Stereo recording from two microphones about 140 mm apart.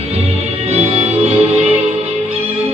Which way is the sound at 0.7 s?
50° right (ahead or behind).